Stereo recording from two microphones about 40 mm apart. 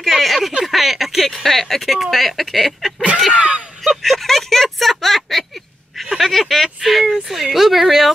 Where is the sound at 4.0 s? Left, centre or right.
Centre.